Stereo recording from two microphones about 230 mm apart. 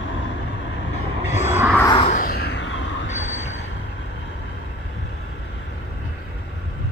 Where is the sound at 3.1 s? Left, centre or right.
Left.